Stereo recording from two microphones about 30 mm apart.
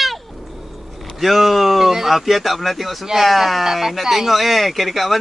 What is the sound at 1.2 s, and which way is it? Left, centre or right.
Speech, centre.